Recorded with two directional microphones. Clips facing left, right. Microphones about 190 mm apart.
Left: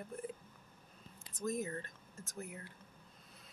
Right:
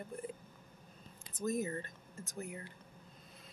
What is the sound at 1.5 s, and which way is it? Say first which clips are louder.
Speech: right 2 dB; centre (ahead or behind).